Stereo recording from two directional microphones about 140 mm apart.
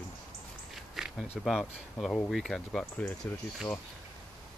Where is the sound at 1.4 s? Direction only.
Centre (ahead or behind).